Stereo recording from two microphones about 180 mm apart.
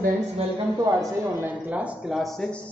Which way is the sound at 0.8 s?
15° right (ahead or behind).